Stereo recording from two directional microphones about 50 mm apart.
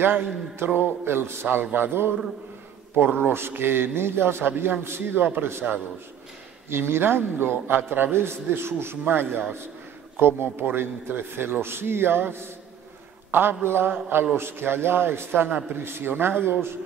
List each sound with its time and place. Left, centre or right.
0.0 s a man's voice: right
3.3 s a man's voice: right
6.7 s a man's voice: right
14.0 s a man's voice: right
14.3 s a man's voice: right